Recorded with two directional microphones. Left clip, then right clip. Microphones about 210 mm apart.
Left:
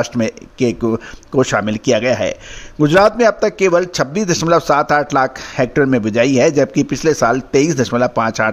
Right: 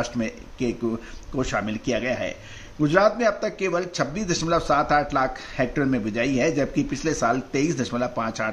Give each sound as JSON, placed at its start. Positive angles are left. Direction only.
{"t": 0.0, "sound": "a man's voice", "side_deg": 50}